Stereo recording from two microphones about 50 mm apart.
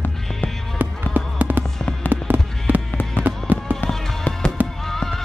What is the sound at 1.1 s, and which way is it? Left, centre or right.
Music, right.